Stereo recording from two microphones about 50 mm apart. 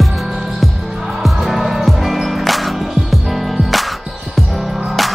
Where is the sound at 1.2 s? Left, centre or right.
Centre.